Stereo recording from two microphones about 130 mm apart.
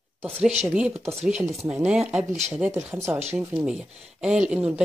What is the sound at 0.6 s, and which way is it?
Speech, 5° right (ahead or behind).